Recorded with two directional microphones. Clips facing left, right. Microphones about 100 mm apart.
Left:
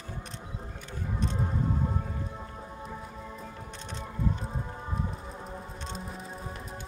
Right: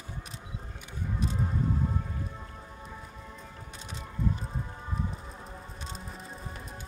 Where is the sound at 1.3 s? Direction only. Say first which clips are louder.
Even; 15° left (ahead or behind).